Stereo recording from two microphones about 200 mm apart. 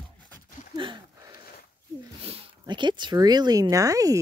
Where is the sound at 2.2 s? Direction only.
30° right (ahead or behind).